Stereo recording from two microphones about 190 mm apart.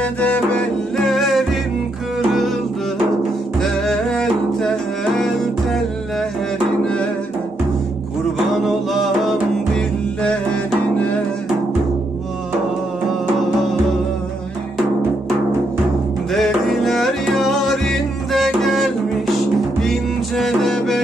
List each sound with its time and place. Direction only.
0.0 s music: 5° left (ahead or behind)
3.5 s music: centre (ahead or behind)
8.6 s music: centre (ahead or behind)
16.3 s music: centre (ahead or behind)